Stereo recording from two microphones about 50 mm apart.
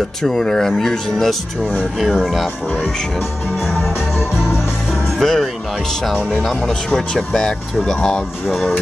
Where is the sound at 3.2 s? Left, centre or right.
Left.